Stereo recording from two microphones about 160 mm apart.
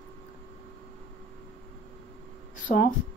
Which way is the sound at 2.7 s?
55° left (ahead or behind).